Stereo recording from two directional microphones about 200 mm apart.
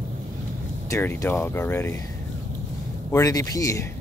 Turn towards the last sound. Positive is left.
turn(degrees=15)  # may be behind; listen again after turning